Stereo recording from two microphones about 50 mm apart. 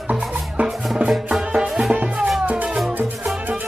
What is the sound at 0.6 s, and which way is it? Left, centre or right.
Music, right.